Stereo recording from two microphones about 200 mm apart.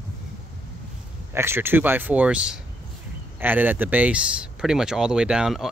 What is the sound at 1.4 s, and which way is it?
Speech, 10° right (ahead or behind).